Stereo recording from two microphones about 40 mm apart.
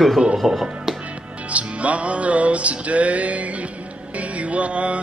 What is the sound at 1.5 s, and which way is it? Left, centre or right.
Music, right.